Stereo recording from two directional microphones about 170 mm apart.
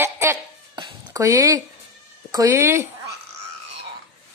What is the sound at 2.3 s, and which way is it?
Speech, 20° right (ahead or behind).